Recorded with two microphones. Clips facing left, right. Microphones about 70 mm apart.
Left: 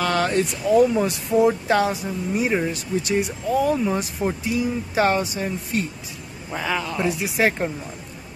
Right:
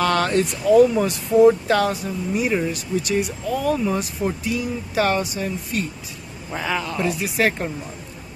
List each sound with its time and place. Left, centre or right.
0.0 s speech: centre; by 5.9 s left
6.5 s speech: centre
7.0 s speech: centre